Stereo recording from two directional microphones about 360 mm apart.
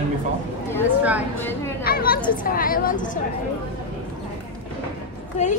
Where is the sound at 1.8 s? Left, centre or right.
Left.